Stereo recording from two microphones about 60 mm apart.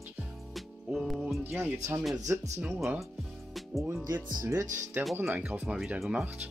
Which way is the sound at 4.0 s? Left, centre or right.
Right.